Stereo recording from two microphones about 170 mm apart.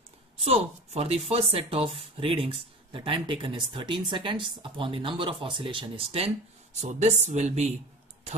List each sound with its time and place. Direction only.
0.4 s speech: 35° right (ahead or behind)